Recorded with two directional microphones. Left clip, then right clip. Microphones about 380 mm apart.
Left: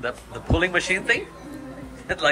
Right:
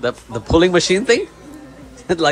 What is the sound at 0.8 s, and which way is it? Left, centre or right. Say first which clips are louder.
Speech: right 7 dB; centre.